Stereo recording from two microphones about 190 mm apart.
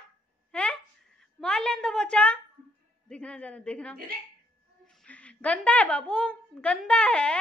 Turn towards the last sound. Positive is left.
turn(degrees=5)  # may be behind; listen again after turning